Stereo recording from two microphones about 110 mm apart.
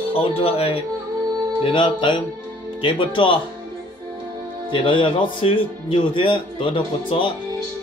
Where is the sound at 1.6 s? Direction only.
45° left (ahead or behind).